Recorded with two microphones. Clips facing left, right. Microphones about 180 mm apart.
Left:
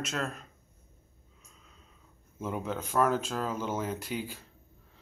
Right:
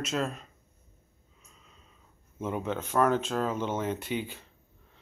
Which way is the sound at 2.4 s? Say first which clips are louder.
Right 2 dB; centre (ahead or behind).